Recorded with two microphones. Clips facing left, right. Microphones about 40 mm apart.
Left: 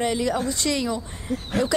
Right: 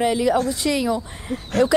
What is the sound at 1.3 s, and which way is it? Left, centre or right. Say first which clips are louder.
Speech: even; right.